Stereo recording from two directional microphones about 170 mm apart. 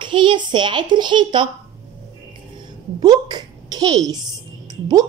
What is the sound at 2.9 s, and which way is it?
A child's voice, 25° right (ahead or behind).